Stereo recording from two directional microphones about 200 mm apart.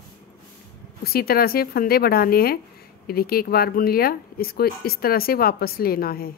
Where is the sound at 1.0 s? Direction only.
50° left (ahead or behind).